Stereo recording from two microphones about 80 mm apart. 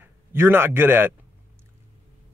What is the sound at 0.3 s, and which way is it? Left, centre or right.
Speech, right.